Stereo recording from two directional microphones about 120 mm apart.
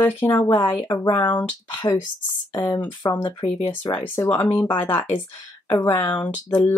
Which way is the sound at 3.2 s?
30° left (ahead or behind).